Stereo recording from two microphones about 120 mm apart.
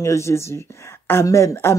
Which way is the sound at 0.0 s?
25° left (ahead or behind).